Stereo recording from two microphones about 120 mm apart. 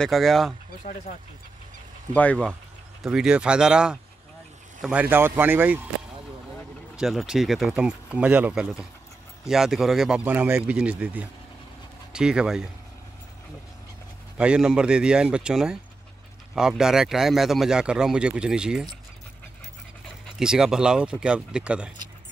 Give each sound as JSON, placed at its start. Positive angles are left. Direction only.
{"t": 0.0, "sound": "speech", "side_deg": 0}
{"t": 2.1, "sound": "speech", "side_deg": 10}
{"t": 3.0, "sound": "speech", "side_deg": -5}
{"t": 7.0, "sound": "speech", "side_deg": 0}
{"t": 14.4, "sound": "speech", "side_deg": -5}
{"t": 20.3, "sound": "speech", "side_deg": -5}